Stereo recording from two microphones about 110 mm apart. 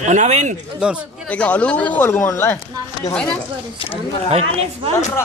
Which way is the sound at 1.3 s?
10° left (ahead or behind).